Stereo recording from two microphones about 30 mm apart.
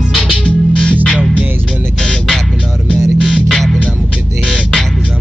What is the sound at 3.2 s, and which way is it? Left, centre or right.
Music, left.